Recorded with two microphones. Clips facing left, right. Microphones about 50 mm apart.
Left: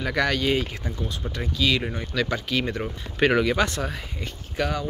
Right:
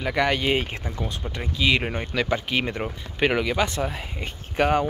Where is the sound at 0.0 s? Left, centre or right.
Centre.